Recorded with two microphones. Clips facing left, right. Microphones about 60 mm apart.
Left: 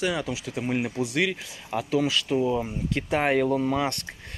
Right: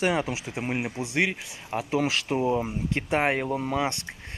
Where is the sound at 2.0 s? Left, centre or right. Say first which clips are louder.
Left 1 dB; right.